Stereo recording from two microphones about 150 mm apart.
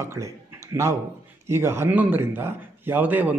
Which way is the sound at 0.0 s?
20° right (ahead or behind).